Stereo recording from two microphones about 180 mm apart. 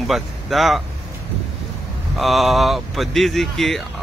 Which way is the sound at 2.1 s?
Centre (ahead or behind).